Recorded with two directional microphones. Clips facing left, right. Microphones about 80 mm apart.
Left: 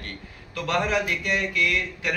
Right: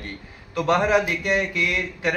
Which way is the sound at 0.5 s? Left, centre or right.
Right.